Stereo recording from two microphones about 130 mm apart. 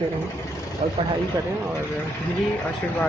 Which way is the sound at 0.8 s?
80° right.